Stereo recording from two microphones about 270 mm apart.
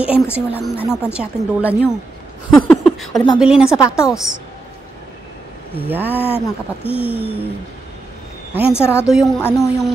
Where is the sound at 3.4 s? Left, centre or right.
Centre.